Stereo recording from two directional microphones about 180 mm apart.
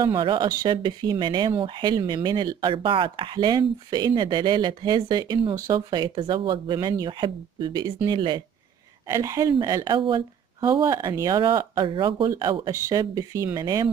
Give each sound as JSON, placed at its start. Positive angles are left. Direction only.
{"t": 0.0, "sound": "speech", "side_deg": -25}
{"t": 9.0, "sound": "speech", "side_deg": -20}